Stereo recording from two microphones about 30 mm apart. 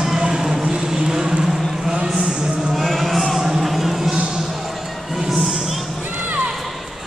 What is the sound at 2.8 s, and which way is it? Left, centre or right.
Music, centre.